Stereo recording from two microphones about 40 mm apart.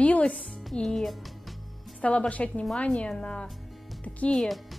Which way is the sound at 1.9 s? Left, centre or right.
Left.